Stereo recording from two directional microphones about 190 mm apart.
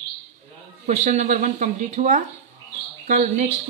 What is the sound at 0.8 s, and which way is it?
Speech, 40° right (ahead or behind).